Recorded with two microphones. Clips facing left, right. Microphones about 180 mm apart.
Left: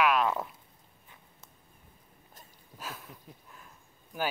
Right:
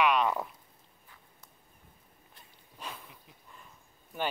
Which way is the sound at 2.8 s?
5° left (ahead or behind).